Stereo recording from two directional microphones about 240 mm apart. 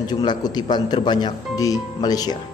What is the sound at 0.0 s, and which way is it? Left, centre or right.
A man's voice, centre.